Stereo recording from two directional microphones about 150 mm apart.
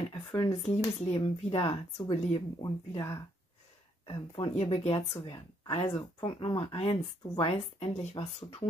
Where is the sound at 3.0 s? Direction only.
15° left (ahead or behind).